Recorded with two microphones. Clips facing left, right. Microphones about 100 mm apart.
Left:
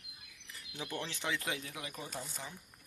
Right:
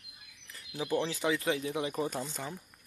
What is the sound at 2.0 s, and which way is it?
Speech, 55° right (ahead or behind).